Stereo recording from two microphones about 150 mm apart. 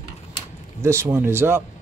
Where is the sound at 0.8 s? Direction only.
20° right (ahead or behind).